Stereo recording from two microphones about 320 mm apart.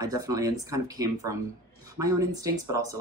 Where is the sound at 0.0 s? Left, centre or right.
Centre.